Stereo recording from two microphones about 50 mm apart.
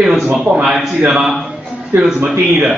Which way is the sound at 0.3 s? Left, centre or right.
Centre.